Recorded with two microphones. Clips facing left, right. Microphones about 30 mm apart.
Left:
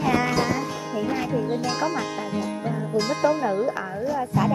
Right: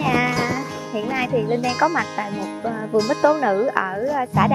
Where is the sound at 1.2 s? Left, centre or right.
Right.